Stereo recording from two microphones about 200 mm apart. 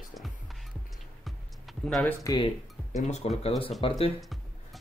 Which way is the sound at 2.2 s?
20° left (ahead or behind).